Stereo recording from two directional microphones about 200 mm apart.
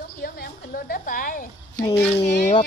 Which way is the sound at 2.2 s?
55° left (ahead or behind).